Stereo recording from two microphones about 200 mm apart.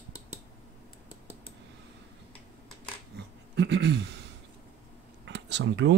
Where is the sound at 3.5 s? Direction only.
60° right (ahead or behind).